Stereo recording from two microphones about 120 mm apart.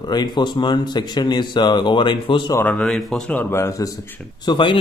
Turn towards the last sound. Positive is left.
turn(degrees=40)  # may be behind; listen again after turning